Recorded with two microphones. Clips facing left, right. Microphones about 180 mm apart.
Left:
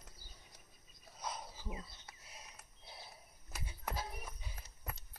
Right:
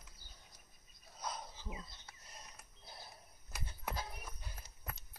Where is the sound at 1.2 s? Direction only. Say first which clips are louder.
Even; 5° left (ahead or behind).